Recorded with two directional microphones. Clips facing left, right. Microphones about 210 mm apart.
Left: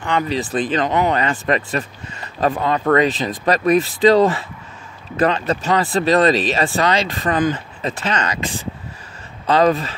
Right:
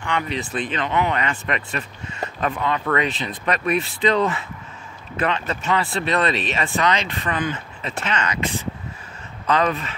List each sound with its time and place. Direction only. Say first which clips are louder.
0.0 s speech: left 5 dB; 35° left (ahead or behind)